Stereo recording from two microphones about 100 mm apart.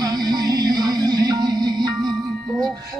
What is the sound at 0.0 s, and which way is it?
Music, 45° right (ahead or behind).